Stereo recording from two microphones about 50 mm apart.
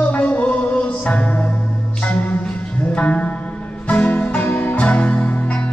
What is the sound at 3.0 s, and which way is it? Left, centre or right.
Music, left.